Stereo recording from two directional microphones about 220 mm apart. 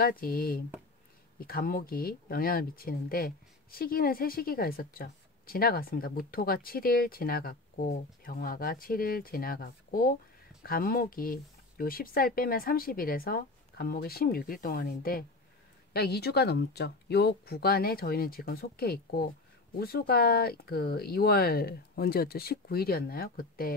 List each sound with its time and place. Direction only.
0.0 s speech: 40° left (ahead or behind)